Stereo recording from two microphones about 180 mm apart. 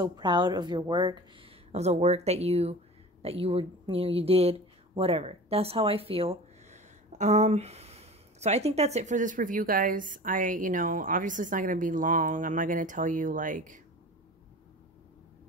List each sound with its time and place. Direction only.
0.0 s a woman's voice: 25° right (ahead or behind)
1.7 s speech: 35° right (ahead or behind)